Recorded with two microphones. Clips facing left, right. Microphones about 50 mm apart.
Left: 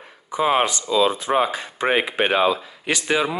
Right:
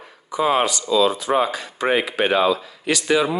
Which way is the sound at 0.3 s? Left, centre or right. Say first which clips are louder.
Even; left.